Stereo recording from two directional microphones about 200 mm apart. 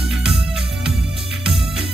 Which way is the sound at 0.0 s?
Centre (ahead or behind).